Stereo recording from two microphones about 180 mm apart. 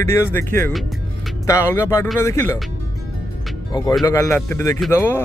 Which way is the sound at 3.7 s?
20° left (ahead or behind).